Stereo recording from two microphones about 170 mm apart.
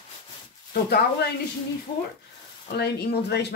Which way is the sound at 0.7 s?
65° left (ahead or behind).